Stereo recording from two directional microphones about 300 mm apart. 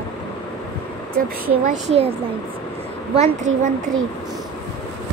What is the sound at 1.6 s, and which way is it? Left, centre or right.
Speech, right.